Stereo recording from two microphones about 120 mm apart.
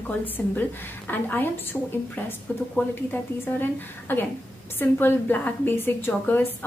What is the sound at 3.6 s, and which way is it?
A woman's voice, 15° left (ahead or behind).